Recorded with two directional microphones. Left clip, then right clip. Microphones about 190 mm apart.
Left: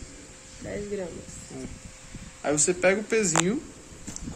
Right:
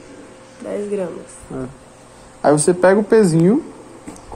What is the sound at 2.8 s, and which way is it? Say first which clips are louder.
Speech: right 11 dB; centre (ahead or behind).